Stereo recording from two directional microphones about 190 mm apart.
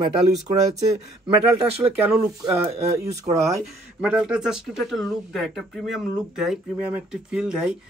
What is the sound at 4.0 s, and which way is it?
Speech, 5° right (ahead or behind).